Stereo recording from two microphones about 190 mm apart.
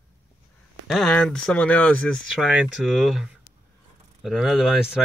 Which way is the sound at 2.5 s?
5° right (ahead or behind).